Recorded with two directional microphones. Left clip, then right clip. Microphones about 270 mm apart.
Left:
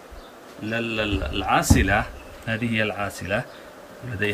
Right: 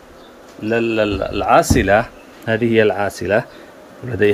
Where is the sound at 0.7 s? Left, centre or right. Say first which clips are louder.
Right 9 dB; centre.